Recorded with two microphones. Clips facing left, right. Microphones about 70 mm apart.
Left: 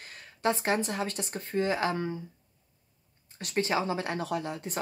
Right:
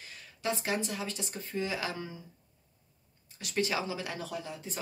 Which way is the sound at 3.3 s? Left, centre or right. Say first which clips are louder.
Left 3 dB; left.